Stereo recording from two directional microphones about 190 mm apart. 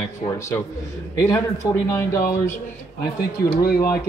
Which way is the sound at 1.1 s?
15° left (ahead or behind).